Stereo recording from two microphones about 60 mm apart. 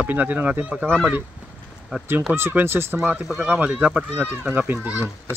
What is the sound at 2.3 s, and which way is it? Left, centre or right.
Speech, right.